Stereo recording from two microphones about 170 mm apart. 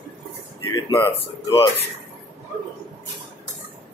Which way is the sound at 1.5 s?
35° left (ahead or behind).